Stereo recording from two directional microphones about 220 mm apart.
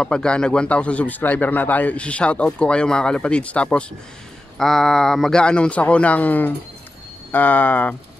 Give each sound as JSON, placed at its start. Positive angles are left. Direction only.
{"t": 0.0, "sound": "speech", "side_deg": 5}